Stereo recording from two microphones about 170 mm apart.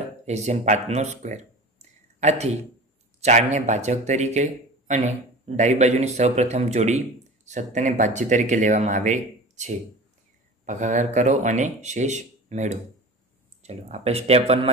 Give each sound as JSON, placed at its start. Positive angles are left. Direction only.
{"t": 0.3, "sound": "a man's voice", "side_deg": -40}